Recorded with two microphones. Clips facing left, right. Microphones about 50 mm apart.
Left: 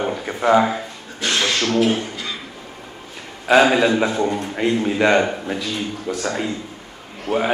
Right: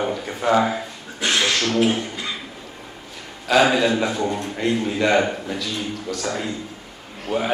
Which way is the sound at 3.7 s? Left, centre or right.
Left.